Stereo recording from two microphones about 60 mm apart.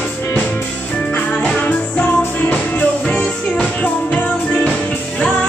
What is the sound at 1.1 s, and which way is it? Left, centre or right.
Music, left.